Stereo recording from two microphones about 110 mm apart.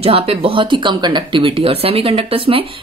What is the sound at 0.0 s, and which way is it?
Speech, 60° right (ahead or behind).